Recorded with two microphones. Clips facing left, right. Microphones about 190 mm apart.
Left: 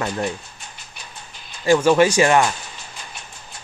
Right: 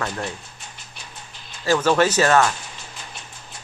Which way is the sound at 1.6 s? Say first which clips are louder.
Left 4 dB; 15° left (ahead or behind).